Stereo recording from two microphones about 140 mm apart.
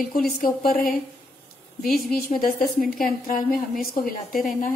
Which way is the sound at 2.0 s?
90° left.